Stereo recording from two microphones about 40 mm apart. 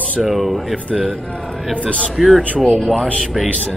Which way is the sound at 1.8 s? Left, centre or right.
Left.